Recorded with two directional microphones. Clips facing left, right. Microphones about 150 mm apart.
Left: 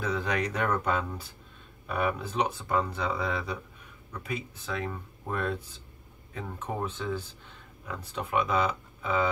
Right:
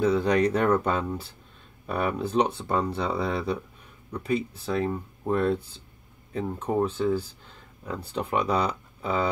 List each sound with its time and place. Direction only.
0.0 s speech: 30° right (ahead or behind)